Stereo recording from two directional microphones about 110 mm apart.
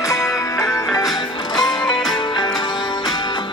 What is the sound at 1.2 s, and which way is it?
Music, 45° left (ahead or behind).